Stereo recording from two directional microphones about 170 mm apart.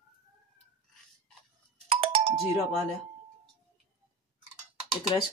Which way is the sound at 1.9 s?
35° right (ahead or behind).